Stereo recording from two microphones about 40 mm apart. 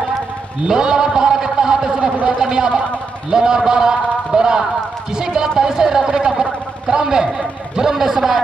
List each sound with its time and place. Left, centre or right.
0.7 s speech: centre